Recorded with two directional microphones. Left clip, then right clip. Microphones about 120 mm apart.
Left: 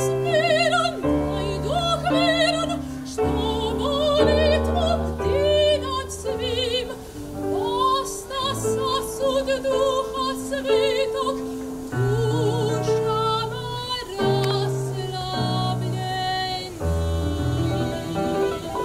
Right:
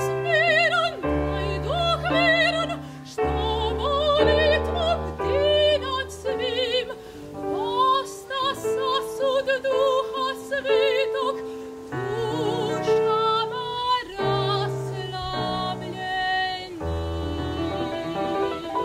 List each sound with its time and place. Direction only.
0.1 s music: 25° left (ahead or behind)
1.0 s music: 45° left (ahead or behind)
1.3 s music: 25° left (ahead or behind)
17.6 s music: 25° left (ahead or behind)